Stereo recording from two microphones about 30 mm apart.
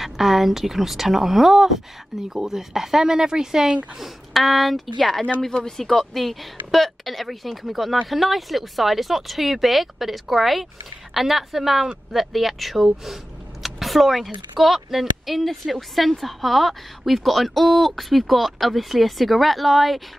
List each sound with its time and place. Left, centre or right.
0.0 s speech: centre
2.2 s speech: right
2.5 s speech: centre
4.0 s speech: centre